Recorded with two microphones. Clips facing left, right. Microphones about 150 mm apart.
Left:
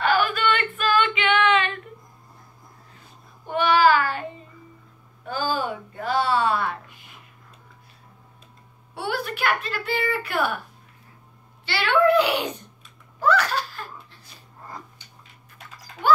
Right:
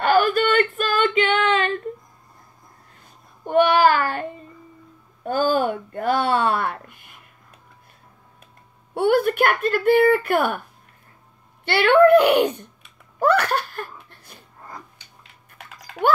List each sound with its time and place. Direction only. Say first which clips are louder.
0.0 s female singing: right 4 dB; 45° right (ahead or behind)
3.4 s child singing: right 3 dB; 50° right (ahead or behind)
5.2 s a sound: right 6 dB; 50° right (ahead or behind)
8.9 s speech: right 11 dB; 50° right (ahead or behind)
11.6 s a sound: right 6 dB; 55° right (ahead or behind)
15.5 s typing: right 4 dB; 65° right (ahead or behind)